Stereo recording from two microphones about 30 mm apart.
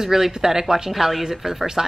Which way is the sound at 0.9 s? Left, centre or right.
Centre.